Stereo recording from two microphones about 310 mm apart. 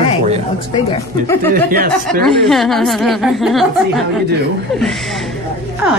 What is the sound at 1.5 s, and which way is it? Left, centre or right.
Speech, right.